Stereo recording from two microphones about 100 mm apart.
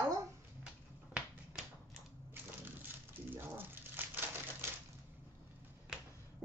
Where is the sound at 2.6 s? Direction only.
20° right (ahead or behind).